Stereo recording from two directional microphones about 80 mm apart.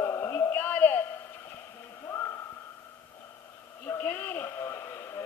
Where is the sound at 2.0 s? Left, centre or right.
Left.